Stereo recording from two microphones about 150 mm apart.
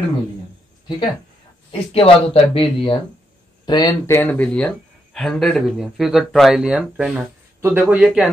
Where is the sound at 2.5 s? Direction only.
40° left (ahead or behind).